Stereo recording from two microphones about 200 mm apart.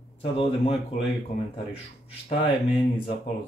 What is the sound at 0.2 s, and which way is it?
Speech, 30° left (ahead or behind).